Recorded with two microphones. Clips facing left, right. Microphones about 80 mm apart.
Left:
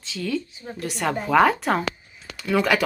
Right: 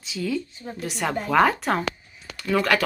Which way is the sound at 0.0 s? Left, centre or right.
Centre.